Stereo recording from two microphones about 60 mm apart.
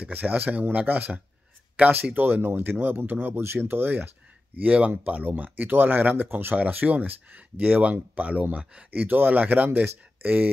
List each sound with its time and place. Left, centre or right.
0.0 s speech: right